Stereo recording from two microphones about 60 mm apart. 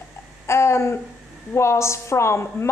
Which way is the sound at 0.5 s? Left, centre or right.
Left.